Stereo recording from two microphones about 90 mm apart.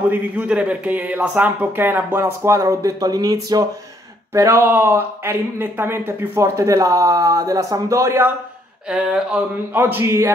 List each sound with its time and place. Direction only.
0.1 s speech: 15° right (ahead or behind); by 3.6 s 45° right (ahead or behind)
4.3 s speech: 30° right (ahead or behind)
8.8 s speech: 10° right (ahead or behind)
9.8 s speech: 30° right (ahead or behind)